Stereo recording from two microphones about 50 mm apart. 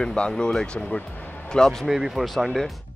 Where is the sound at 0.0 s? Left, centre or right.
Centre.